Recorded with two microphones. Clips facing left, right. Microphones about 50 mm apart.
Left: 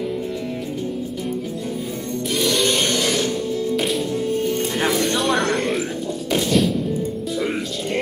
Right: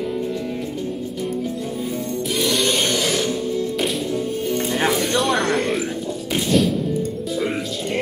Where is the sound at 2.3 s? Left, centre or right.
Centre.